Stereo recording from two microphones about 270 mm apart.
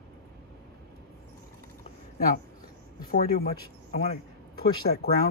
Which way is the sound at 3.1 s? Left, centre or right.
Left.